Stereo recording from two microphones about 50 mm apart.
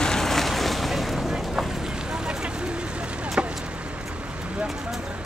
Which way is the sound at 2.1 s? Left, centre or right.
Centre.